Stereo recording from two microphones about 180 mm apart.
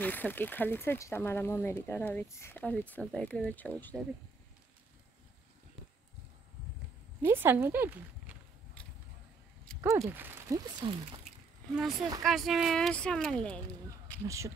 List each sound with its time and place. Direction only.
0.0 s speech: 10° left (ahead or behind)
7.2 s speech: 10° right (ahead or behind)
8.8 s vehicle: 5° left (ahead or behind)
9.8 s speech: 15° right (ahead or behind)
12.2 s speech: centre (ahead or behind)
14.2 s speech: 15° right (ahead or behind)